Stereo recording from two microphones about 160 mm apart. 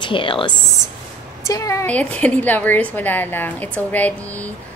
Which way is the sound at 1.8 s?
10° left (ahead or behind).